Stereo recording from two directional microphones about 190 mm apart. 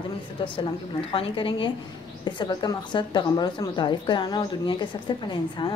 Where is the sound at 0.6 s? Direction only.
30° left (ahead or behind).